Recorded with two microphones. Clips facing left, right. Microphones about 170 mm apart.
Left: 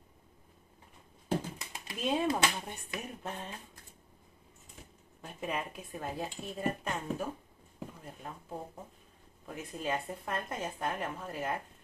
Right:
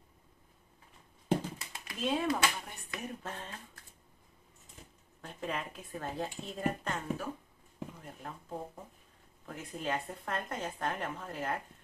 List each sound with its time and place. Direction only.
1.6 s speech: 20° left (ahead or behind)
5.2 s speech: 10° left (ahead or behind)